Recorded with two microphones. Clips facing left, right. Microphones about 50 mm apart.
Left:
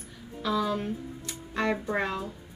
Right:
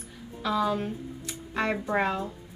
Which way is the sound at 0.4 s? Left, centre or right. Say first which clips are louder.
Right 1 dB; centre.